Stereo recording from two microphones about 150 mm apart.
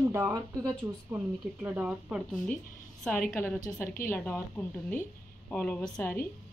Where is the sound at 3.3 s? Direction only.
15° left (ahead or behind).